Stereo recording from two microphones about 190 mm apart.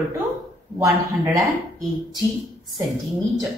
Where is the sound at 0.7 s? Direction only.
15° right (ahead or behind).